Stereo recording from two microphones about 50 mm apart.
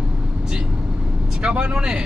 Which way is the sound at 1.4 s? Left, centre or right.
Right.